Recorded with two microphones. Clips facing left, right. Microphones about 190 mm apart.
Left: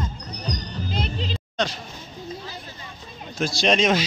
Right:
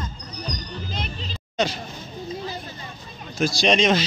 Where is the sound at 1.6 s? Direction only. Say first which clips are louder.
Right 2 dB; 5° right (ahead or behind).